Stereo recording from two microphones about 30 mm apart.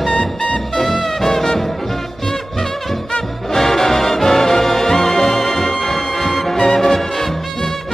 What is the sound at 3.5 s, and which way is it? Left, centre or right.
Music, centre.